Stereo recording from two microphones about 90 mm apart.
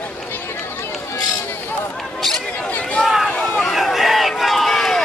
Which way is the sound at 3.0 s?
Centre (ahead or behind).